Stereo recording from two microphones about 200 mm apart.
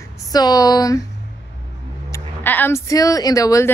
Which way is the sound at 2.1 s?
10° left (ahead or behind).